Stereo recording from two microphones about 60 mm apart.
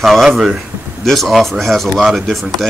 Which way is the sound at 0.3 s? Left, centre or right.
Centre.